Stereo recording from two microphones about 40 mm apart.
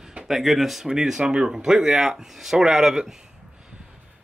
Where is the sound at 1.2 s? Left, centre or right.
Right.